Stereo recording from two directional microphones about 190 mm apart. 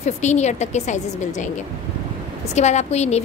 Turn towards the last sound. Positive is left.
turn(degrees=35)  # may be behind; listen again after turning